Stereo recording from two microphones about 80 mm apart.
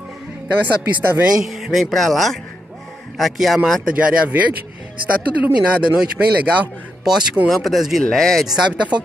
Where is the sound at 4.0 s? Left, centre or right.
Centre.